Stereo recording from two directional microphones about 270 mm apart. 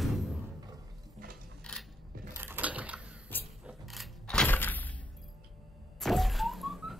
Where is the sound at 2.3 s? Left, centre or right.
Centre.